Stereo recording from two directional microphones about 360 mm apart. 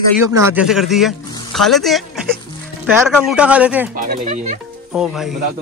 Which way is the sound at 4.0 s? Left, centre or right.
Right.